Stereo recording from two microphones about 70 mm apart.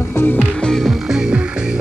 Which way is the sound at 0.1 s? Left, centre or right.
Left.